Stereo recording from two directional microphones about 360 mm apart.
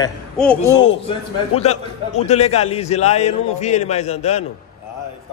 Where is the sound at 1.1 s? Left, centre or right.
Centre.